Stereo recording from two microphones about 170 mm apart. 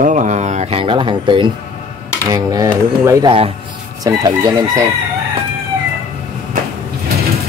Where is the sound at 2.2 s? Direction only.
20° right (ahead or behind).